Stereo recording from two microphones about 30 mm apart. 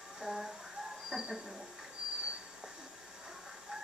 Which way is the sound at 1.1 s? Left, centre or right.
Centre.